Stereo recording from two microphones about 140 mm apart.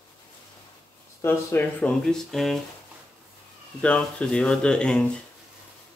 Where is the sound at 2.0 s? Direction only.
5° left (ahead or behind).